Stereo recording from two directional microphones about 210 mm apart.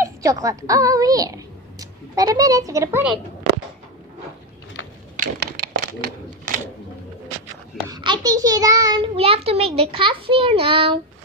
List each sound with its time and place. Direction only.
0.0 s a woman's voice: 15° right (ahead or behind)
5.2 s a sound: 50° right (ahead or behind)
7.9 s a child's voice: 20° right (ahead or behind)